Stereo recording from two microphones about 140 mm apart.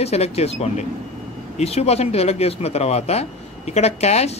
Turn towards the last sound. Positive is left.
turn(degrees=50)  # may be behind; listen again after turning